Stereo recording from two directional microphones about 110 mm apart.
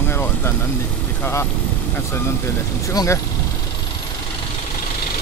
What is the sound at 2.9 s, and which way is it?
Speech, 25° left (ahead or behind).